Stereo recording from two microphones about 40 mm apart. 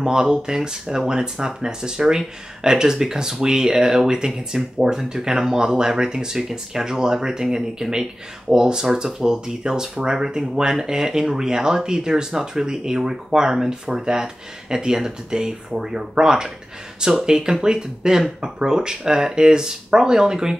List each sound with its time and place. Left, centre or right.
0.0 s speech: centre